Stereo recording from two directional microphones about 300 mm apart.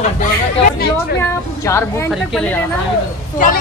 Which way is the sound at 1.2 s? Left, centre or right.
Centre.